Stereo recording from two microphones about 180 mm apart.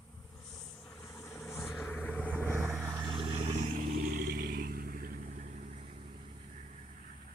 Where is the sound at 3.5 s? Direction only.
50° right (ahead or behind).